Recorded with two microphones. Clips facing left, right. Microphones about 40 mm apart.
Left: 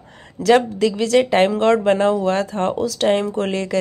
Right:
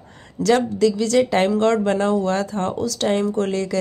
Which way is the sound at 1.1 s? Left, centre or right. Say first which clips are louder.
Left 2 dB; left.